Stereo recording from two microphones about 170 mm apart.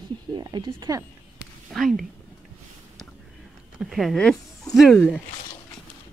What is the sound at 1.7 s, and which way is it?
Speech, centre (ahead or behind).